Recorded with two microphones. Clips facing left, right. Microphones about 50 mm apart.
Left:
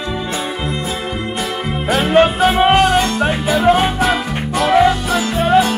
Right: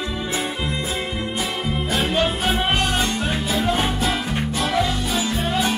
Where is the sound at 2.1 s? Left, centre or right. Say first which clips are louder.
Left 12 dB; left.